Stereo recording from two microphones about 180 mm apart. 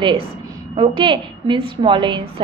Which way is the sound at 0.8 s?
30° right (ahead or behind).